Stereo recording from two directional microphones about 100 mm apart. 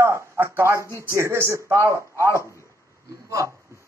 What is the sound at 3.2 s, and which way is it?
Speech, 35° right (ahead or behind).